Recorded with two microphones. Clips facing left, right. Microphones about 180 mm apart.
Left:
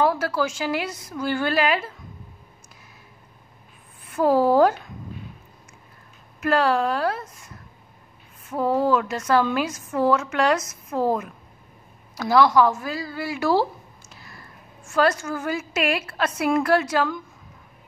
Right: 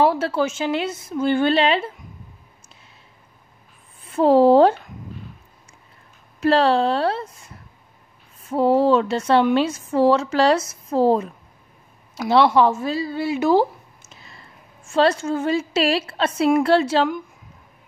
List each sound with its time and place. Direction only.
0.0 s a woman's voice: 30° right (ahead or behind)
4.0 s speech: 25° right (ahead or behind)
6.4 s a woman's voice: 30° right (ahead or behind)
8.5 s a woman's voice: 30° right (ahead or behind)
12.3 s a woman's voice: 25° right (ahead or behind)